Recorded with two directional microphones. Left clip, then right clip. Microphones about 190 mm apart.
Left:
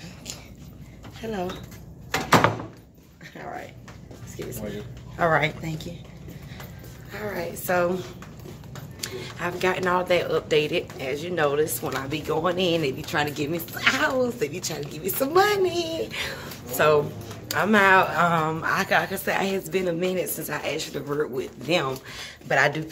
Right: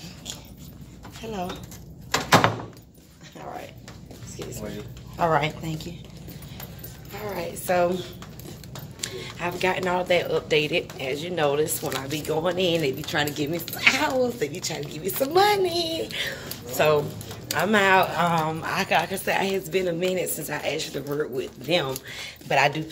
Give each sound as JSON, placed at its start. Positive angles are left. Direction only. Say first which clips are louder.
{"t": 1.2, "sound": "speech", "louder": "left 2 dB", "side_deg": 15}
{"t": 3.3, "sound": "speech", "louder": "left 1 dB", "side_deg": 10}
{"t": 5.2, "sound": "speech", "louder": "left 1 dB", "side_deg": 15}
{"t": 7.1, "sound": "a woman's voice", "louder": "left 1 dB", "side_deg": 5}